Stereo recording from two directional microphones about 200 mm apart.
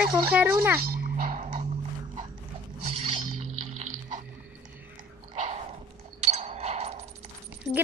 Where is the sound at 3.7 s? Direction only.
40° right (ahead or behind).